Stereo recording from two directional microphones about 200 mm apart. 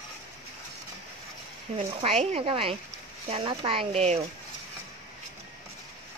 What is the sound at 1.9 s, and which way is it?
Speech, 30° right (ahead or behind).